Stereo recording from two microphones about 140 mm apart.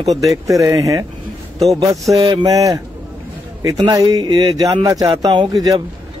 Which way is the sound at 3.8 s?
25° right (ahead or behind).